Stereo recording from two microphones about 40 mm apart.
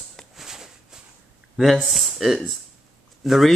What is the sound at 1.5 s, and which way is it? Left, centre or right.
Speech, centre.